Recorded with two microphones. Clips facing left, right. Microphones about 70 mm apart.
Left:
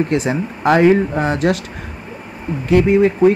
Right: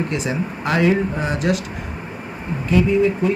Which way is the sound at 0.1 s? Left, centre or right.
Left.